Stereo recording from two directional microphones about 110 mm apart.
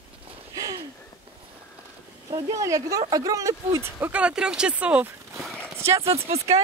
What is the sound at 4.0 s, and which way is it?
Speech, 10° right (ahead or behind).